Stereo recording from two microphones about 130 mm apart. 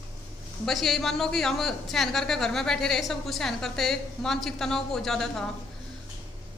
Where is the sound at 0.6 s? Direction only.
Centre (ahead or behind).